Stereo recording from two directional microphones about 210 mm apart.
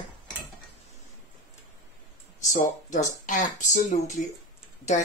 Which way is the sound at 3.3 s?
35° left (ahead or behind).